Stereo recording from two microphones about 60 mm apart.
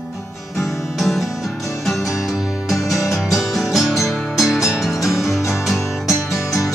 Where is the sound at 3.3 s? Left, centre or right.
Centre.